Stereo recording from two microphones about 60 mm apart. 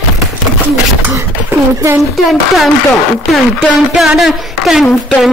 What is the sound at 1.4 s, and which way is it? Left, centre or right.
Speech, right.